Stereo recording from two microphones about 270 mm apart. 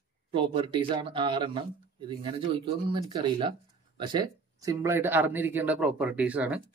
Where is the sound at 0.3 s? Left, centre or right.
Centre.